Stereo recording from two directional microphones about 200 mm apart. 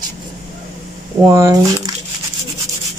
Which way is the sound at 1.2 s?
15° right (ahead or behind).